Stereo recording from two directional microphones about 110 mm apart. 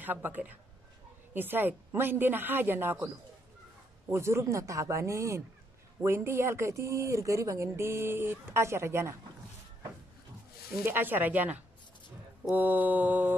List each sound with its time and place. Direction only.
0.0 s mantra: 15° right (ahead or behind)
1.3 s speech: 20° right (ahead or behind)
4.1 s speech: 25° right (ahead or behind)
10.9 s mantra: 15° right (ahead or behind)